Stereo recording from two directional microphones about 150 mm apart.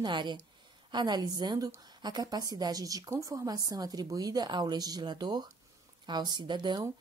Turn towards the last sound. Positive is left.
turn(degrees=-30)  # may be behind; listen again after turning